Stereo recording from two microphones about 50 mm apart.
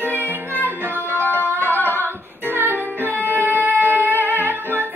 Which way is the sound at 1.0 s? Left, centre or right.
Left.